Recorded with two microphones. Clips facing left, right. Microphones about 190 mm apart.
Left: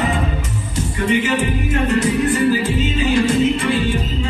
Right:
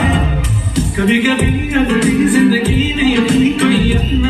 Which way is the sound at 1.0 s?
90° right.